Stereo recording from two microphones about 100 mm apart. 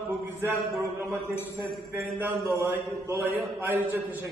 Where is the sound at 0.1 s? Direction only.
20° right (ahead or behind).